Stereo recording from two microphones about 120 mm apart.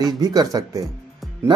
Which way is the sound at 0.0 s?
30° right (ahead or behind).